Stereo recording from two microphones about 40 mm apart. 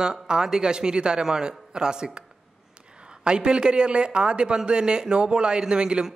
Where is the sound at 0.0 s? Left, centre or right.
Centre.